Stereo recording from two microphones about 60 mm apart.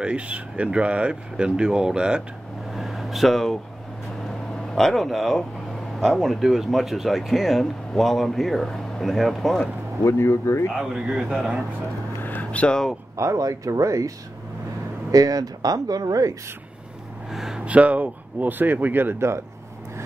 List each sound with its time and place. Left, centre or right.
0.0 s speech: centre
2.7 s a sound: centre
4.6 s speech: centre
10.0 s speech: left
10.7 s speech: centre
12.2 s a sound: left
13.1 s speech: right
15.0 s speech: right
17.3 s a sound: centre
17.6 s speech: right